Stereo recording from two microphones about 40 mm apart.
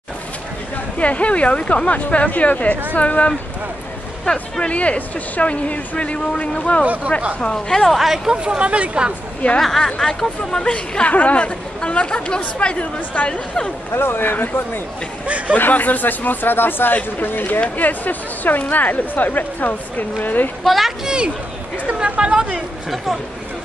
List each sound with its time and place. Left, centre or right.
0.9 s speech: left
4.3 s speech: left
4.7 s speech: left
7.5 s a woman's voice: centre
7.9 s speech: centre
8.5 s speech: right
9.6 s a woman's voice: centre
9.8 s speech: centre
10.7 s speech: left
13.9 s speech: left
15.2 s speech: right
15.5 s speech: left
20.6 s speech: centre
21.0 s speech: right